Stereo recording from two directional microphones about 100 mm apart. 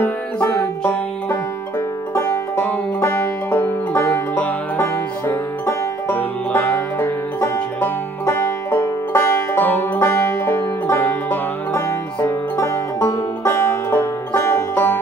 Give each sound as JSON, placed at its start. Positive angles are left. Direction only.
{"t": 0.0, "sound": "music", "side_deg": 20}
{"t": 2.5, "sound": "music", "side_deg": 20}